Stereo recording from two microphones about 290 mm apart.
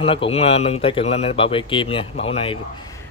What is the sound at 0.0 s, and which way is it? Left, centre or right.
Speech, centre.